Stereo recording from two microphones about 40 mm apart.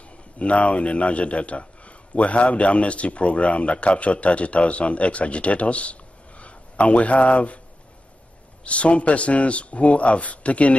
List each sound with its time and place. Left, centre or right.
0.4 s a man's voice: left
8.6 s a man's voice: left